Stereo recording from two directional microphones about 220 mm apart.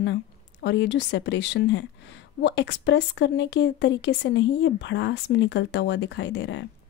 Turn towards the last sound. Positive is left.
turn(degrees=55)  # may be behind; listen again after turning